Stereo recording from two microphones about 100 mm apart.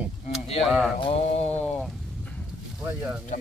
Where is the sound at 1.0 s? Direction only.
90° left.